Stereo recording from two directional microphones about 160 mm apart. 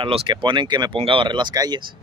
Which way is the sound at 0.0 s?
30° right (ahead or behind).